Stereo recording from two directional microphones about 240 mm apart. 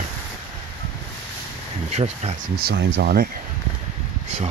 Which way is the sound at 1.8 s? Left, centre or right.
Right.